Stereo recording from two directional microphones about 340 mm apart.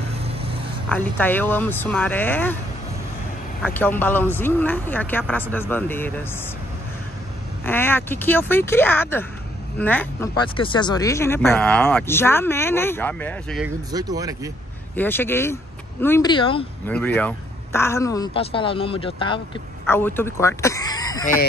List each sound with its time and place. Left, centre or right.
0.1 s dog: centre
0.8 s speech: centre
3.6 s speech: centre
7.6 s speech: centre
13.9 s speech: centre
15.0 s speech: centre